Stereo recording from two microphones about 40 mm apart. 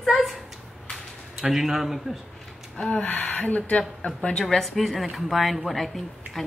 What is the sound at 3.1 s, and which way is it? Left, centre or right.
Speech, left.